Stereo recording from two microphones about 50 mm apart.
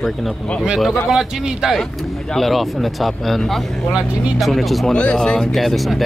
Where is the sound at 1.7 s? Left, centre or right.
Centre.